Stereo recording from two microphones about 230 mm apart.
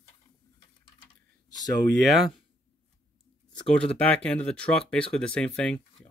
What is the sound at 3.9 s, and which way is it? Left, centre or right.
Speech, centre.